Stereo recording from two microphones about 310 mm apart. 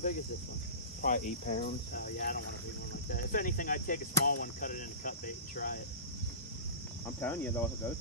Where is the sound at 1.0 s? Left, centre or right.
Left.